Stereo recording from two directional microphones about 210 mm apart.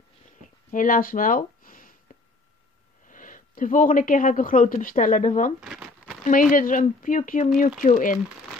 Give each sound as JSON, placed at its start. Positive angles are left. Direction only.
{"t": 0.7, "sound": "speech", "side_deg": 40}
{"t": 3.1, "sound": "speech", "side_deg": 40}
{"t": 5.6, "sound": "crumpling", "side_deg": -5}
{"t": 6.5, "sound": "speech", "side_deg": 40}